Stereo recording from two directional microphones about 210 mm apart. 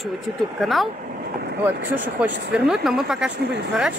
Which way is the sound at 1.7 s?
40° right (ahead or behind).